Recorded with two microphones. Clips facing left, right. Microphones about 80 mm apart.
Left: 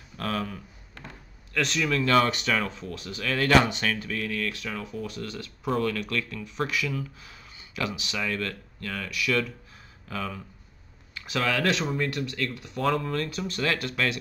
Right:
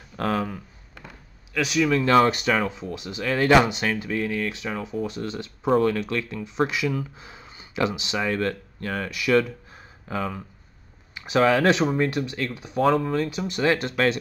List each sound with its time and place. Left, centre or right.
0.2 s a sound: right
1.5 s speech: centre
2.0 s speech: right